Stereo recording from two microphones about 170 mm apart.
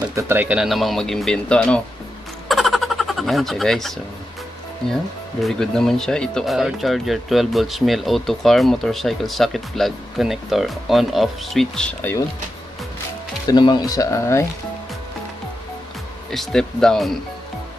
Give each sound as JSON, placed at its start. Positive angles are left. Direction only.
{"t": 0.1, "sound": "speech", "side_deg": -10}
{"t": 2.4, "sound": "a sound", "side_deg": 0}
{"t": 5.4, "sound": "speech", "side_deg": 5}
{"t": 13.5, "sound": "speech", "side_deg": 25}
{"t": 16.3, "sound": "speech", "side_deg": 0}